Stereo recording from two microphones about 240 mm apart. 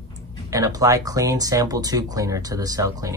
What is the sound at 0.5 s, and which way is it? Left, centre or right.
Speech, centre.